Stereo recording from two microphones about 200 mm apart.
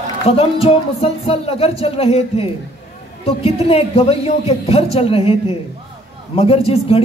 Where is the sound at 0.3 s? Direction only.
30° left (ahead or behind).